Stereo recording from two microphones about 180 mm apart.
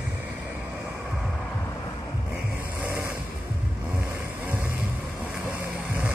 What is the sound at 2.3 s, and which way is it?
Music, 10° right (ahead or behind).